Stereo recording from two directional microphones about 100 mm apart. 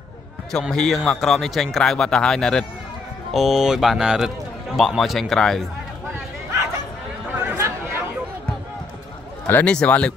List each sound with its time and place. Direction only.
0.5 s speech: 5° left (ahead or behind)
7.3 s chatter: 25° right (ahead or behind)
9.5 s speech: 15° left (ahead or behind)